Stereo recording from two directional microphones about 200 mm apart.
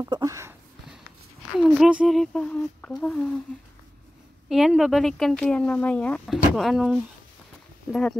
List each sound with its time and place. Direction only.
0.0 s a sound: 15° right (ahead or behind)
1.6 s speech: centre (ahead or behind)
4.5 s speech: centre (ahead or behind)